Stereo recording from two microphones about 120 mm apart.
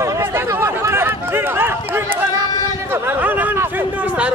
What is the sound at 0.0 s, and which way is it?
Run, 20° right (ahead or behind).